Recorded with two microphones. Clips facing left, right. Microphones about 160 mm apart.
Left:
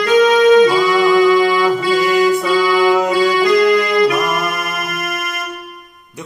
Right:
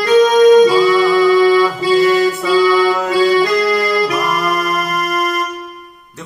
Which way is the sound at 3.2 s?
35° right (ahead or behind).